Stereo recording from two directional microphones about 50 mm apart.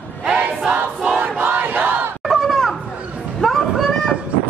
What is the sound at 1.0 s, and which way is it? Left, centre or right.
Battle cry, centre.